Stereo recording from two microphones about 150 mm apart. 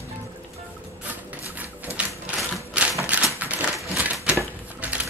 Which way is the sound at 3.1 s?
10° right (ahead or behind).